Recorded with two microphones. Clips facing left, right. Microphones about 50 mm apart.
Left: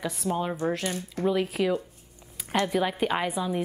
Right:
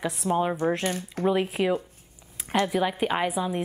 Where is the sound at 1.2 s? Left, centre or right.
Centre.